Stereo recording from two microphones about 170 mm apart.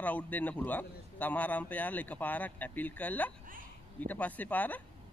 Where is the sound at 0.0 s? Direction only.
10° left (ahead or behind).